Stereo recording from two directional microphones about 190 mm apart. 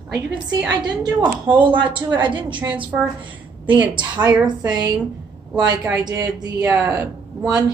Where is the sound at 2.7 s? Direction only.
10° right (ahead or behind).